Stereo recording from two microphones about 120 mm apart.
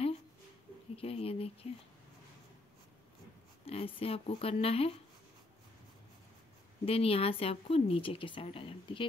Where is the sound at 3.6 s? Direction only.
55° left (ahead or behind).